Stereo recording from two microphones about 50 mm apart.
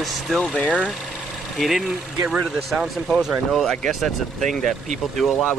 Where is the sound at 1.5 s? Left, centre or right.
Centre.